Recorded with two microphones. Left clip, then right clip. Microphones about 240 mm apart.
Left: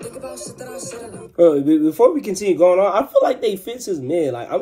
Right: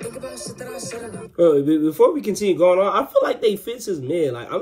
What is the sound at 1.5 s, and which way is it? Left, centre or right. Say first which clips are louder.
Speech: left 1 dB; centre.